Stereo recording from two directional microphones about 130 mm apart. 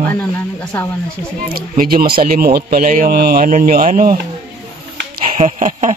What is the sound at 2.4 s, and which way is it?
A man's voice, 90° right.